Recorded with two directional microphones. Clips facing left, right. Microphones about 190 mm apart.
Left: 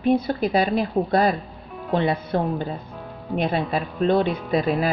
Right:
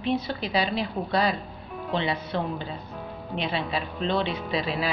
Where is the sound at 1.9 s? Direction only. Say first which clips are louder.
Left 6 dB; 50° left (ahead or behind).